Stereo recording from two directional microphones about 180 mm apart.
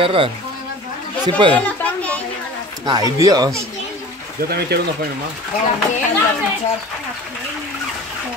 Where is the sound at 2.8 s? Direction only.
20° right (ahead or behind).